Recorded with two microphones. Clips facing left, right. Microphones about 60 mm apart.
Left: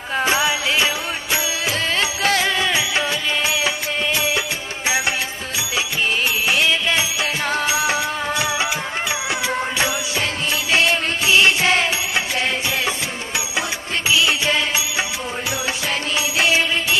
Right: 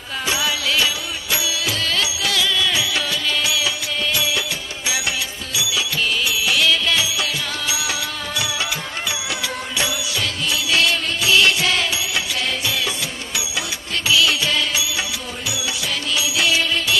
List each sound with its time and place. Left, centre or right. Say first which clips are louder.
0.2 s music: left 3 dB; left
5.6 s music: even; left
10.5 s music: left 1 dB; left
16.2 s music: left 2 dB; left